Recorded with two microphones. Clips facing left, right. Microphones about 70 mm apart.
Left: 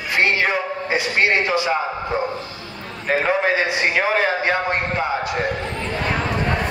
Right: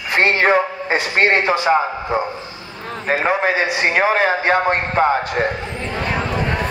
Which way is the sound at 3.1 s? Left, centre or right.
Right.